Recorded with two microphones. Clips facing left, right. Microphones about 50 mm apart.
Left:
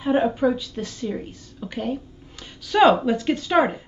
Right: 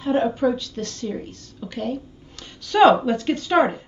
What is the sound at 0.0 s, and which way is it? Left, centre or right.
A woman's voice, centre.